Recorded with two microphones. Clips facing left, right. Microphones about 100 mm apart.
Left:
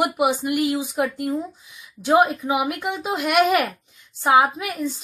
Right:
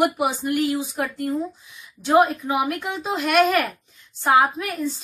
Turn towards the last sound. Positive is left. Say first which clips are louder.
# left 1 dB
turn(degrees=10)  # may be behind; listen again after turning